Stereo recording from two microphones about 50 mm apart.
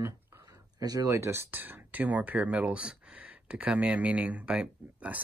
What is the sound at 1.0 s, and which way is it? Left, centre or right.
Speech, right.